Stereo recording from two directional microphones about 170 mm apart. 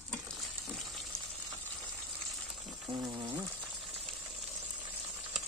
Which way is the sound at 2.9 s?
25° right (ahead or behind).